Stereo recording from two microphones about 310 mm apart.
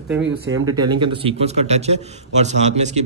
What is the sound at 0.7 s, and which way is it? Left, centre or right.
A man's voice, centre.